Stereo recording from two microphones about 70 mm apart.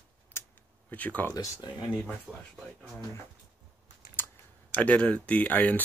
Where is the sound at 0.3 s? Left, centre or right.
Left.